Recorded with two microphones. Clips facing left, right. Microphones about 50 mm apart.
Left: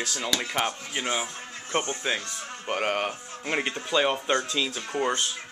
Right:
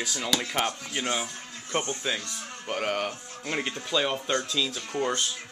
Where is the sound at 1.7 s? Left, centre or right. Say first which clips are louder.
Left 2 dB; left.